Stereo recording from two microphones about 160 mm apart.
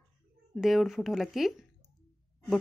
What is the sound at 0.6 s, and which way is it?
Speech, centre (ahead or behind).